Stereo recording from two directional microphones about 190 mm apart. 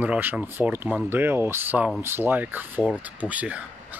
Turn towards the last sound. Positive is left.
turn(degrees=-5)  # may be behind; listen again after turning